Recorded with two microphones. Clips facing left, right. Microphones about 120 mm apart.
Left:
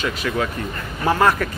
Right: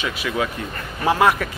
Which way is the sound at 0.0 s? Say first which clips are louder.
Left 1 dB; 5° right (ahead or behind).